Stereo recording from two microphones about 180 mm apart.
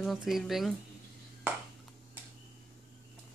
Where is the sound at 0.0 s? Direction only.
Centre (ahead or behind).